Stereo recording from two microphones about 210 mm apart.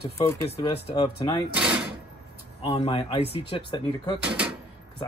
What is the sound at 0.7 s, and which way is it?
Speech, 25° left (ahead or behind).